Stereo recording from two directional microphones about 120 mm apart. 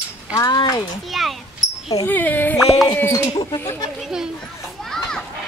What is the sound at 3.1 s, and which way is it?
Speech, 30° left (ahead or behind).